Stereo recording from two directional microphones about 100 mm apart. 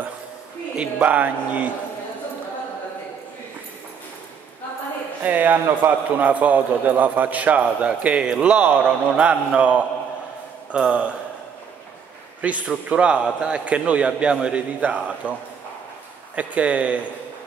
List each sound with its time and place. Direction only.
0.7 s a man's voice: 15° right (ahead or behind)
5.2 s a man's voice: 15° right (ahead or behind)
12.4 s a man's voice: 15° right (ahead or behind)
16.3 s a man's voice: 15° right (ahead or behind)